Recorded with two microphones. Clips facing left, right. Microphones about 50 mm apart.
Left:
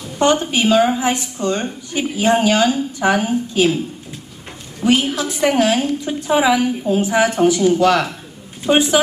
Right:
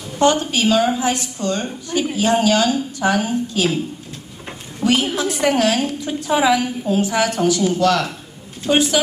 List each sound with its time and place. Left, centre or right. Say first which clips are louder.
0.2 s a woman's voice: left 1 dB; left
4.8 s a woman's voice: left 1 dB; left
7.0 s a woman's voice: left 3 dB; left